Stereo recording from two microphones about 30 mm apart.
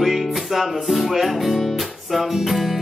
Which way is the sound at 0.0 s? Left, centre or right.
Centre.